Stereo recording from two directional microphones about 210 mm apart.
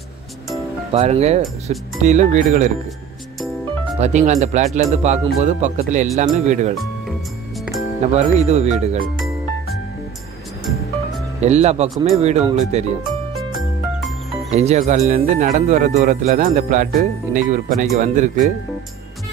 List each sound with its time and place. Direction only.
0.9 s speech: 30° right (ahead or behind)
4.0 s speech: 35° right (ahead or behind)
8.1 s speech: 30° right (ahead or behind)
11.4 s speech: 30° right (ahead or behind)
14.5 s speech: 30° right (ahead or behind)